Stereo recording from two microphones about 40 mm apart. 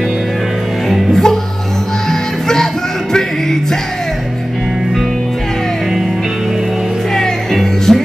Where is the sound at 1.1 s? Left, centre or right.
Centre.